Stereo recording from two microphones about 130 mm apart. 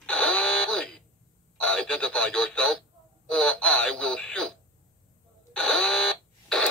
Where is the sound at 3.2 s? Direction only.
5° left (ahead or behind).